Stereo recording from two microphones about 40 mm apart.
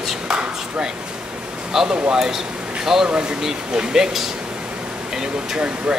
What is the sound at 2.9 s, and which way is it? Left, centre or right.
Speech, centre.